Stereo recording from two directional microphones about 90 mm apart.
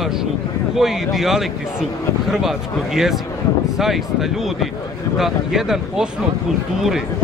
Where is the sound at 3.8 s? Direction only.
5° right (ahead or behind).